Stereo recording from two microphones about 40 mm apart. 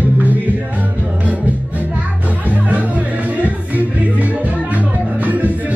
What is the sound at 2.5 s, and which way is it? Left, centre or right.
Music, right.